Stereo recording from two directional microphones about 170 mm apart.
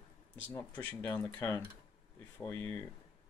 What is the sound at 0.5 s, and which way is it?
Speech, 10° left (ahead or behind).